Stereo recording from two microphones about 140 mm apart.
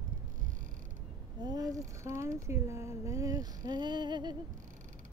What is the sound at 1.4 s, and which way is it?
Speech, 25° right (ahead or behind).